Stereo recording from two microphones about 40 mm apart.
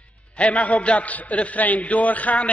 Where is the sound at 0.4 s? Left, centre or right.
Left.